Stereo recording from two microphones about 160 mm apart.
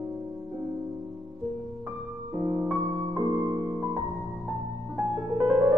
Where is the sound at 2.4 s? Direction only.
10° right (ahead or behind).